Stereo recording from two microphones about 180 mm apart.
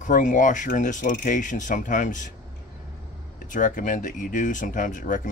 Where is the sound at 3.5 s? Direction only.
45° left (ahead or behind).